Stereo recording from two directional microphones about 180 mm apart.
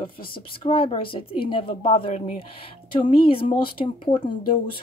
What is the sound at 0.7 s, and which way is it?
A woman's voice, 30° left (ahead or behind).